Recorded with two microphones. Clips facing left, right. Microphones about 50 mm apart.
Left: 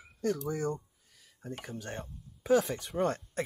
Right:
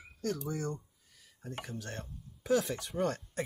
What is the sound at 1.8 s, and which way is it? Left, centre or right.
Speech, left.